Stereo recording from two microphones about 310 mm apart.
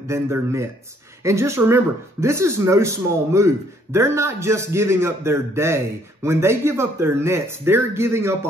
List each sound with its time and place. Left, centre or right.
0.1 s speech: centre